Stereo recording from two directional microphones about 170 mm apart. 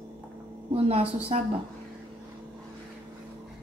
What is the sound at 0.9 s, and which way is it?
Speech, 35° right (ahead or behind).